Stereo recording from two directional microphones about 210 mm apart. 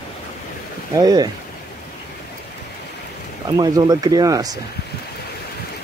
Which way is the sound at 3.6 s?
20° right (ahead or behind).